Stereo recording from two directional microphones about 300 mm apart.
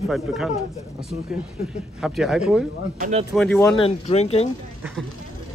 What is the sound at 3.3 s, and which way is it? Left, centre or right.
Speech, centre.